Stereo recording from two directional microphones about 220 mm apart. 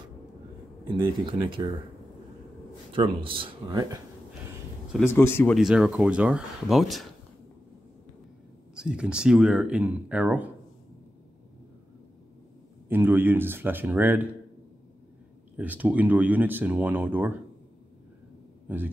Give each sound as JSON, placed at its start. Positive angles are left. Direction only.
{"t": 0.8, "sound": "speech", "side_deg": -20}
{"t": 2.9, "sound": "speech", "side_deg": -25}
{"t": 4.9, "sound": "a man's voice", "side_deg": 10}
{"t": 5.6, "sound": "speech", "side_deg": 0}
{"t": 8.7, "sound": "speech", "side_deg": -5}
{"t": 12.8, "sound": "speech", "side_deg": -10}
{"t": 15.5, "sound": "speech", "side_deg": -5}
{"t": 18.7, "sound": "speech", "side_deg": -5}